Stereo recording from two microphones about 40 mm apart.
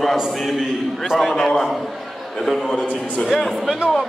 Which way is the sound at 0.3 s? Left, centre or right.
Centre.